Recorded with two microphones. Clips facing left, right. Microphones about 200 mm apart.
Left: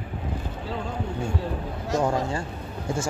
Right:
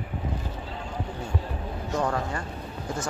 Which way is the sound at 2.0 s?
25° left (ahead or behind).